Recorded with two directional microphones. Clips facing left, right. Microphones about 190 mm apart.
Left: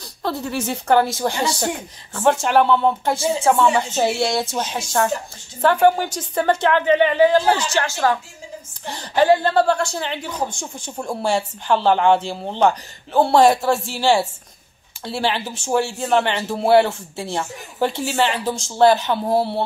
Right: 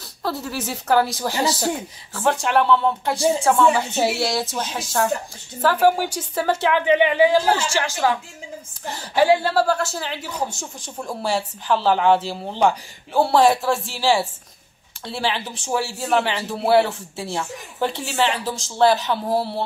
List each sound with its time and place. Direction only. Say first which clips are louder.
0.2 s a woman's voice: left 2 dB; centre (ahead or behind)
19.2 s speech: left 3 dB; 25° left (ahead or behind)